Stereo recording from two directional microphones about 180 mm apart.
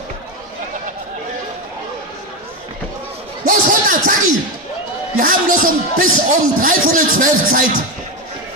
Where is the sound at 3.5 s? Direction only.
50° right (ahead or behind).